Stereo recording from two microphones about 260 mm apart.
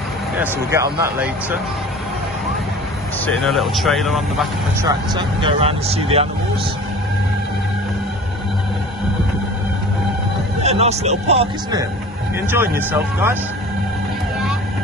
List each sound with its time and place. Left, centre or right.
0.4 s speech: centre
3.3 s speech: centre
4.8 s speech: centre
10.6 s speech: right
12.4 s speech: centre